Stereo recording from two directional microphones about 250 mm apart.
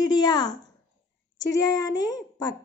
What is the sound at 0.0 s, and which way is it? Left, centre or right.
Speech, centre.